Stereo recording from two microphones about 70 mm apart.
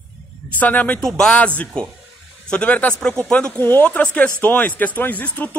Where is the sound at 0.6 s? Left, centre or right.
Left.